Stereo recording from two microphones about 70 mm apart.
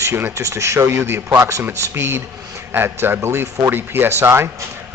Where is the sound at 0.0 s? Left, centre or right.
Right.